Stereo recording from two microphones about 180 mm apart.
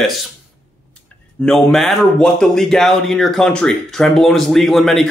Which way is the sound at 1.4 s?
Centre (ahead or behind).